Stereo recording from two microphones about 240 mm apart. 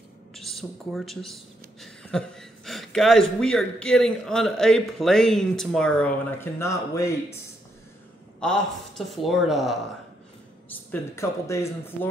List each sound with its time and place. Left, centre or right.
0.3 s speech: centre
8.4 s speech: centre
10.7 s speech: centre